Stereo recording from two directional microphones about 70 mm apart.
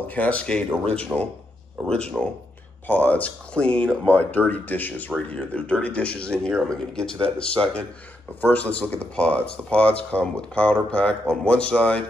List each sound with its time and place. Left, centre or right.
0.0 s speech: left
2.9 s speech: left